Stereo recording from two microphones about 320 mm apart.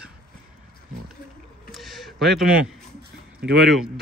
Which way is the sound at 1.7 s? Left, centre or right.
Centre.